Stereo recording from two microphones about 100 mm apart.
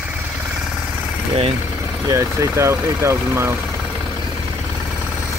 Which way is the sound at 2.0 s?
35° right (ahead or behind).